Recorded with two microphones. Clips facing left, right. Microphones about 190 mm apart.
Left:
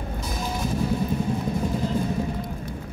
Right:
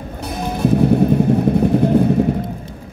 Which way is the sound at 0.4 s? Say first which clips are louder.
Right 12 dB; 60° right (ahead or behind).